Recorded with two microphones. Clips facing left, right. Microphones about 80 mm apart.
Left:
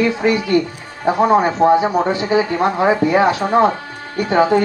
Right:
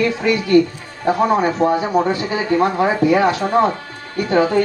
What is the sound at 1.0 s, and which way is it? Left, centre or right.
Speech, left.